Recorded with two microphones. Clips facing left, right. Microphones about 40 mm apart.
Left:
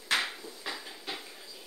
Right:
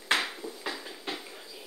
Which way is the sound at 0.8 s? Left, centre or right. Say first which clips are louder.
Right 3 dB; centre.